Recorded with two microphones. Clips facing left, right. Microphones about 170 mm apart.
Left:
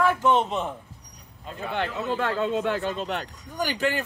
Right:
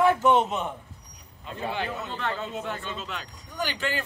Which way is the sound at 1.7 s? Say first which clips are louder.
Left 6 dB; 60° left (ahead or behind).